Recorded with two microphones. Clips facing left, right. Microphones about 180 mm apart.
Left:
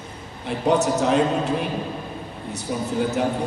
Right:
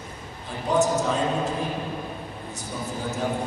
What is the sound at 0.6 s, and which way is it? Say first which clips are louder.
Speech: left 3 dB; 70° left (ahead or behind).